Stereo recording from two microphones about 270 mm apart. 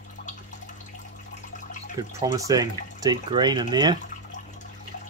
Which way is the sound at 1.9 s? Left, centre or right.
Centre.